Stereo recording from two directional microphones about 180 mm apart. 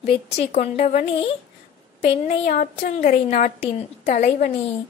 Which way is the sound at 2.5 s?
45° left (ahead or behind).